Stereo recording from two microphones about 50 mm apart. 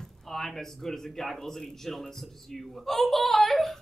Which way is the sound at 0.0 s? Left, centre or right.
Centre.